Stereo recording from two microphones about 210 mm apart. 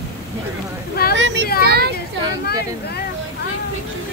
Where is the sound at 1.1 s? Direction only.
60° right (ahead or behind).